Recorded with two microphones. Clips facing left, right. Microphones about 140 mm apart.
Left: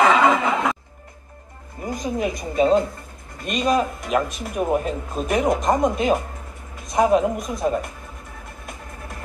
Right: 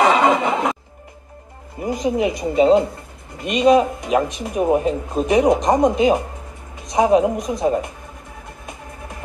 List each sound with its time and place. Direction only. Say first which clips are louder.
0.0 s snicker: right 1 dB; 30° right (ahead or behind)
1.8 s speech: right 5 dB; 20° right (ahead or behind)